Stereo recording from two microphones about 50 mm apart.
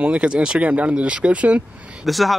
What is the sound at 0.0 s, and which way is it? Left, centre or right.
Speech, right.